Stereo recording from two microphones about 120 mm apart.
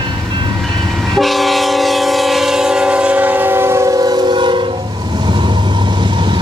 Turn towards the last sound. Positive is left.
turn(degrees=-40)  # may be behind; listen again after turning